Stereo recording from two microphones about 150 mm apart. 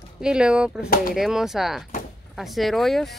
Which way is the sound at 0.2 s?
5° right (ahead or behind).